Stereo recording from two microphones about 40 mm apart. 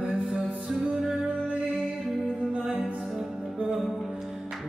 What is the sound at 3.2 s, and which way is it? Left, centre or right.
Music, centre.